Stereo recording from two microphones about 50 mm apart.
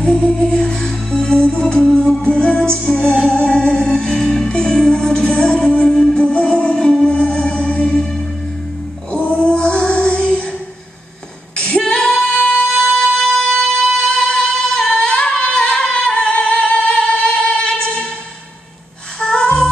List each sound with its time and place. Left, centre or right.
0.0 s music: centre
6.2 s music: left
9.1 s child singing: left
11.5 s female singing: centre
12.9 s music: left
19.1 s female singing: centre